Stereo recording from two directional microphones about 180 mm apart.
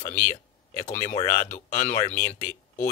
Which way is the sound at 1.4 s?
45° left (ahead or behind).